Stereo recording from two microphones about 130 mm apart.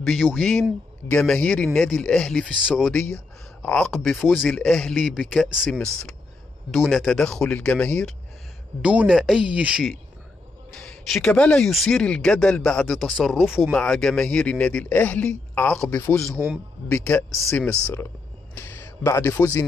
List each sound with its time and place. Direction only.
0.0 s speech: centre (ahead or behind)
2.5 s speech: 5° right (ahead or behind)
2.9 s a man's voice: 10° left (ahead or behind)
8.8 s speech: 10° right (ahead or behind)
10.7 s a man's voice: 5° left (ahead or behind)